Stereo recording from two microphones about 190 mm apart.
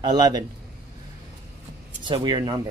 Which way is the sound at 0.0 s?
20° right (ahead or behind).